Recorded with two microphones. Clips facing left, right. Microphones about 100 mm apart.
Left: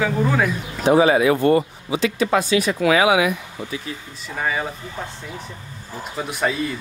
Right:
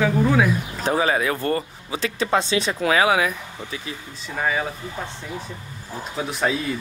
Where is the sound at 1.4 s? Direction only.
25° left (ahead or behind).